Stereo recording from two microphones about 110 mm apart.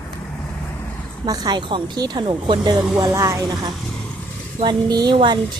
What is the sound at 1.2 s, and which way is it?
A woman's voice, 35° right (ahead or behind).